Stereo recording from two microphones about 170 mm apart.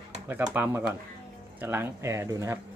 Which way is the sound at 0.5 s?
10° right (ahead or behind).